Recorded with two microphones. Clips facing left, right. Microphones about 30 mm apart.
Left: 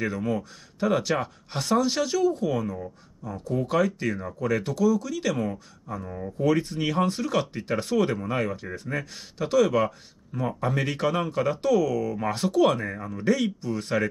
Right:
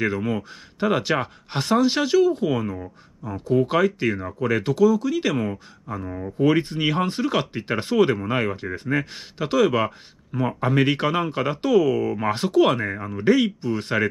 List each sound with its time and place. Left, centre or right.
0.0 s speech: right